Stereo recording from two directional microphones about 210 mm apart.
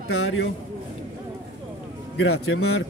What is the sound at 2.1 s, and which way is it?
Speech, 85° left.